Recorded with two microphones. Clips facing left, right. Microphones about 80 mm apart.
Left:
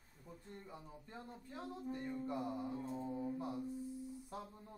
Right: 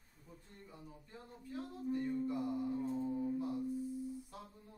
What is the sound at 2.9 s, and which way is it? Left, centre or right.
Music, centre.